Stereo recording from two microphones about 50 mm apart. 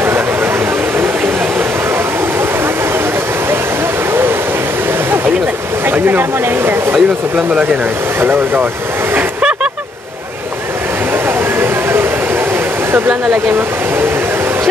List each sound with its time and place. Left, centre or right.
5.9 s speech: right
9.4 s vehicle: centre
11.6 s a sound: right